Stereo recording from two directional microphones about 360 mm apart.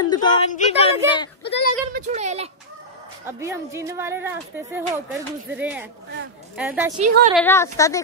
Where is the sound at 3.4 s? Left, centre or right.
Centre.